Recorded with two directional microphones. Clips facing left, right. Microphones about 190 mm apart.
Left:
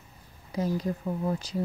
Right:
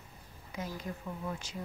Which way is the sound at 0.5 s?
35° left (ahead or behind).